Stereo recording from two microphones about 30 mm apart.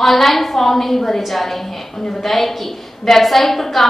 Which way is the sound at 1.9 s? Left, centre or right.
Centre.